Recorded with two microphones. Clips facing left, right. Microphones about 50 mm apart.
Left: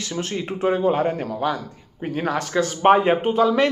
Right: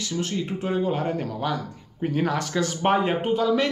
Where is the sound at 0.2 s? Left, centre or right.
Left.